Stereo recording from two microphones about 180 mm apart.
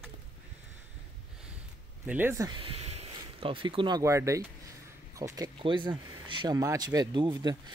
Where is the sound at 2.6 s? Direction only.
30° right (ahead or behind).